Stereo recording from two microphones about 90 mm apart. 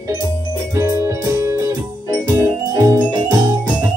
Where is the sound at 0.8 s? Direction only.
35° right (ahead or behind).